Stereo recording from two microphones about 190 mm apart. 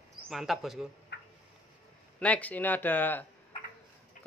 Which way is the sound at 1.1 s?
60° left (ahead or behind).